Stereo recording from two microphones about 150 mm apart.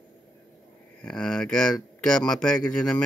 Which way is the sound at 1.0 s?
5° left (ahead or behind).